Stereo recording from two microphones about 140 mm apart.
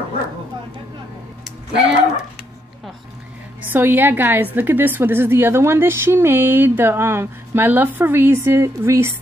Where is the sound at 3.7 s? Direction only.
15° right (ahead or behind).